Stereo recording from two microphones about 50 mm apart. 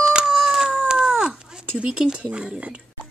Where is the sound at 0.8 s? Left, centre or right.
Centre.